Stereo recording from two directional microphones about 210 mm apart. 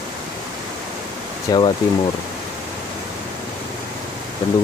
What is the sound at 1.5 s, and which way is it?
Speech, 20° left (ahead or behind).